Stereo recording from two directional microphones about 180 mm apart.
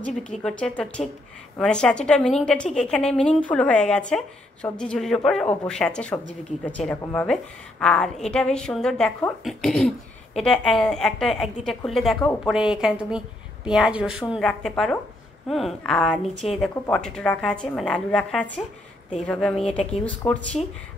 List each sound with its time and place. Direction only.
0.4 s a woman's voice: 5° left (ahead or behind)